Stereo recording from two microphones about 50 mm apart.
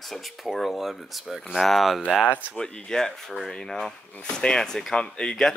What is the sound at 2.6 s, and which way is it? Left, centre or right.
Speech, centre.